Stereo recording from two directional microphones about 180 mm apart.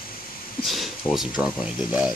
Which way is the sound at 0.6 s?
Centre (ahead or behind).